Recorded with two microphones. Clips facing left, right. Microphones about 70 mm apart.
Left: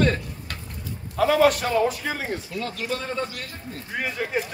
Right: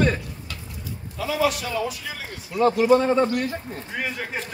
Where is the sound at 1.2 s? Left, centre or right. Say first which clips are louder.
Left 5 dB; left.